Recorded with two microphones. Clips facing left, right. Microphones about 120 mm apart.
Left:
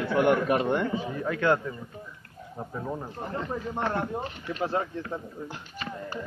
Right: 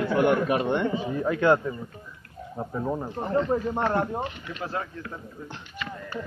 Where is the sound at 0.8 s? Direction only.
25° right (ahead or behind).